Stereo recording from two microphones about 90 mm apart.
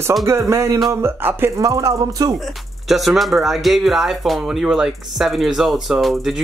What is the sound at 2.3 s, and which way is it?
Speech, centre (ahead or behind).